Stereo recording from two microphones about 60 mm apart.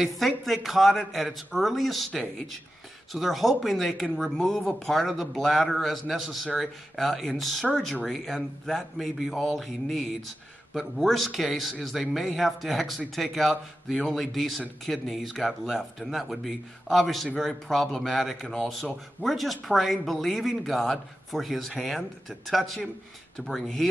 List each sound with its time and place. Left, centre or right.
0.0 s a man's voice: centre